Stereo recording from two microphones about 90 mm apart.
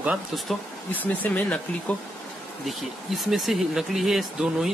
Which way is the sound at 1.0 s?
20° left (ahead or behind).